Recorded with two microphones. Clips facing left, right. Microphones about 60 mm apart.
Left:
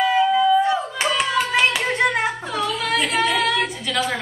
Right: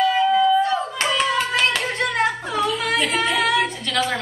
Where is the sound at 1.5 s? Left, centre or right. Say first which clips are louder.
Left 2 dB; centre.